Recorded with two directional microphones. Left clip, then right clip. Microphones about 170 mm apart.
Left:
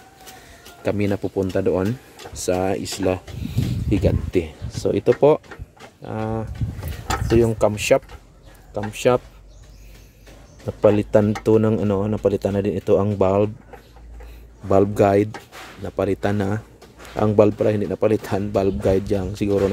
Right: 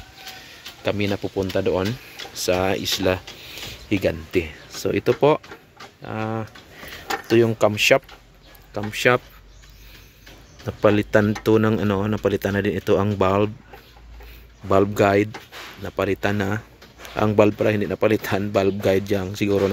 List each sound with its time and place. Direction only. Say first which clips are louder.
0.8 s speech: left 1 dB; 15° left (ahead or behind)
1.2 s speech: left 1 dB; centre (ahead or behind)
10.8 s speech: left 2 dB; 5° left (ahead or behind)
14.7 s speech: left 1 dB; 10° left (ahead or behind)